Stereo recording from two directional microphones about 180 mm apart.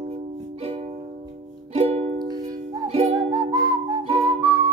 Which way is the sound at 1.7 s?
35° right (ahead or behind).